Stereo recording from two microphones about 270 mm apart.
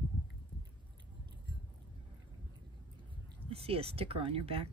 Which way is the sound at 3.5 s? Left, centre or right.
Right.